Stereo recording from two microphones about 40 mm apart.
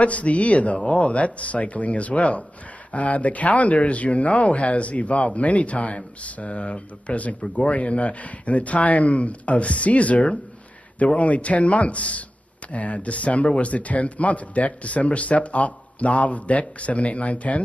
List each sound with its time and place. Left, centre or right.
0.0 s speech: left